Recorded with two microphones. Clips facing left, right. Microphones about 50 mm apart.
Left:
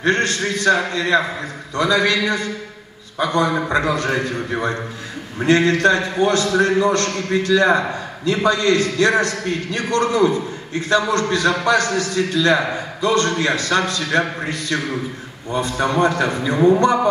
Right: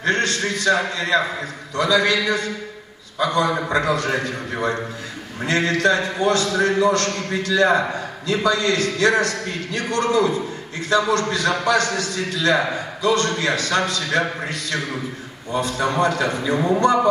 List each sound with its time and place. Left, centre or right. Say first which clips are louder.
0.0 s a man's voice: left 2 dB; left